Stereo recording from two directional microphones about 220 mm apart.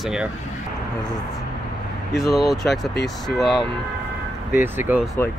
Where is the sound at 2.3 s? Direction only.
Centre (ahead or behind).